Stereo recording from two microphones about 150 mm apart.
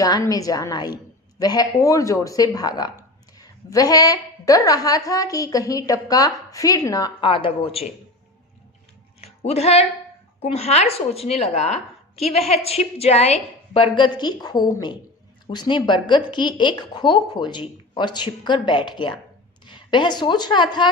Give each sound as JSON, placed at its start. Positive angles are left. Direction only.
{"t": 0.0, "sound": "speech", "side_deg": 25}
{"t": 7.2, "sound": "speech", "side_deg": 35}
{"t": 9.2, "sound": "a woman's voice", "side_deg": 40}